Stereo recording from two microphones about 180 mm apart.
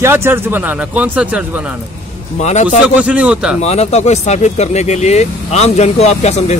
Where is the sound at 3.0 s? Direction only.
5° right (ahead or behind).